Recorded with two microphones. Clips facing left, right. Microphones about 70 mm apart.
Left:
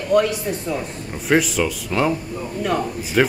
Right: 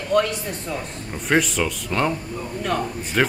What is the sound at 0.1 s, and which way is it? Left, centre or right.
A woman's voice, centre.